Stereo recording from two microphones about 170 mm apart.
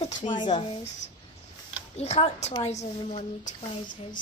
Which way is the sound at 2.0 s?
40° left (ahead or behind).